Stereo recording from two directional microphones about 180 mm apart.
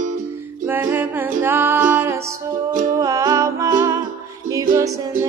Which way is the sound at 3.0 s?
20° right (ahead or behind).